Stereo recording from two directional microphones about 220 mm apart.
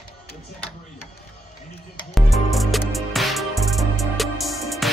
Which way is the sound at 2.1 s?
Centre (ahead or behind).